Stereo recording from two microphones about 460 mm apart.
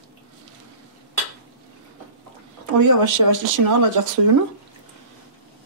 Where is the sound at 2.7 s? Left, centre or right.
Right.